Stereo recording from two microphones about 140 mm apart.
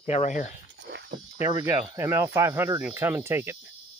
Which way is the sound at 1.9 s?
20° right (ahead or behind).